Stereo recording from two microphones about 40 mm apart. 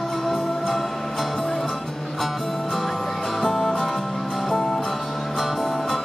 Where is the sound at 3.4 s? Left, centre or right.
Centre.